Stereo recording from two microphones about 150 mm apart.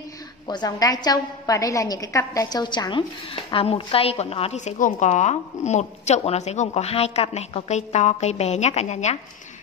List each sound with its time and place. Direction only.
0.5 s a woman's voice: 25° left (ahead or behind); by 9.2 s 50° left (ahead or behind)